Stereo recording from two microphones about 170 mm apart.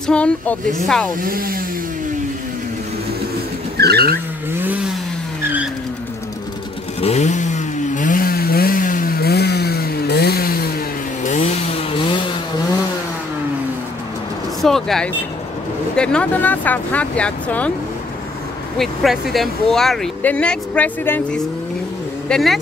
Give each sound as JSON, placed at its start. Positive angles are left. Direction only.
{"t": 0.0, "sound": "speech", "side_deg": 5}
{"t": 1.2, "sound": "speech", "side_deg": -60}
{"t": 3.7, "sound": "vehicle", "side_deg": -70}
{"t": 4.5, "sound": "a sound", "side_deg": -10}
{"t": 7.0, "sound": "chainsaw", "side_deg": 40}
{"t": 11.2, "sound": "chainsaw", "side_deg": 40}
{"t": 14.6, "sound": "speech", "side_deg": 0}
{"t": 18.8, "sound": "speech", "side_deg": 0}
{"t": 22.3, "sound": "speech", "side_deg": 0}